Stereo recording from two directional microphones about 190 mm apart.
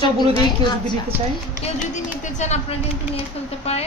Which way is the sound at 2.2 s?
40° left (ahead or behind).